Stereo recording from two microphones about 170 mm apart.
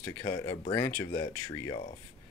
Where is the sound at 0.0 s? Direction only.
20° left (ahead or behind).